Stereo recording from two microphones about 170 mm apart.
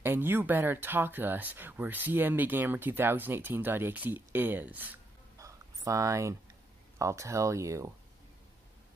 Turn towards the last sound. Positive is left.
turn(degrees=-20)  # may be behind; listen again after turning